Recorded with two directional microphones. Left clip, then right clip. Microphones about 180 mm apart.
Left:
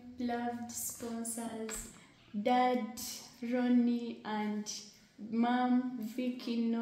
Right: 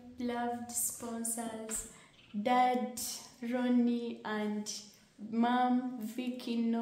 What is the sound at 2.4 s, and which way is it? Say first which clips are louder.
A woman's voice: right 1 dB; 20° right (ahead or behind).